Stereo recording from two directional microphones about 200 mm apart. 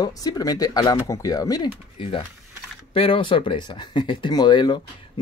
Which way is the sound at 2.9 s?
25° left (ahead or behind).